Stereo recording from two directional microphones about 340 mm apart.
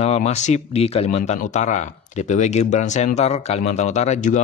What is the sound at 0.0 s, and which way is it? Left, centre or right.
Speech, centre.